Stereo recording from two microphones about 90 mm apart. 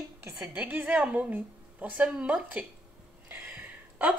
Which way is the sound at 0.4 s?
20° right (ahead or behind).